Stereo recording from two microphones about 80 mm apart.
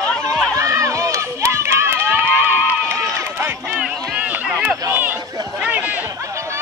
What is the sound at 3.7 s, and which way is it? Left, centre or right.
Run, centre.